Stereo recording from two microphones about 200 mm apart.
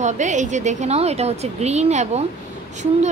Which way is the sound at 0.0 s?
35° right (ahead or behind).